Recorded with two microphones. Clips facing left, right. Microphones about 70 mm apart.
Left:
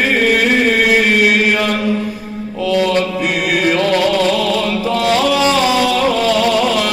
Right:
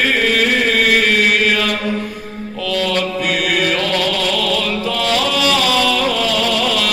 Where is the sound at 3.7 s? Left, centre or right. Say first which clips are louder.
Left 4 dB; left.